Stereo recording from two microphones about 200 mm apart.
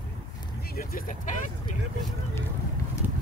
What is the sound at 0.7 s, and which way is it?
Speech, 50° left (ahead or behind).